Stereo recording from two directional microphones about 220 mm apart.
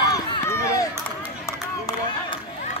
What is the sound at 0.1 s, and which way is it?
Crowd, 15° left (ahead or behind).